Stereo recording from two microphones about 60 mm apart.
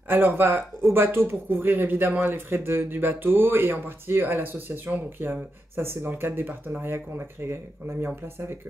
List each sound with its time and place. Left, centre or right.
0.1 s speech: right